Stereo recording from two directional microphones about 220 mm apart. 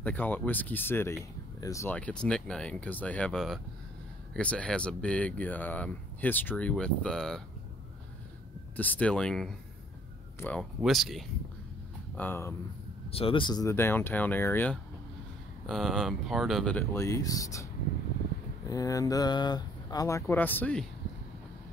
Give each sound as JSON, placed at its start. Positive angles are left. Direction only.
{"t": 0.0, "sound": "speech", "side_deg": 5}
{"t": 8.7, "sound": "speech", "side_deg": 10}
{"t": 13.1, "sound": "speech", "side_deg": 25}
{"t": 18.7, "sound": "speech", "side_deg": 15}